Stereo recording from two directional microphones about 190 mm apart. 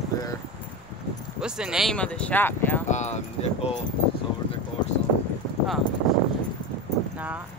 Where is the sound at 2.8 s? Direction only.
35° left (ahead or behind).